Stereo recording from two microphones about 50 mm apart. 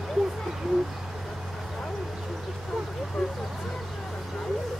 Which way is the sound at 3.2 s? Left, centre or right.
Centre.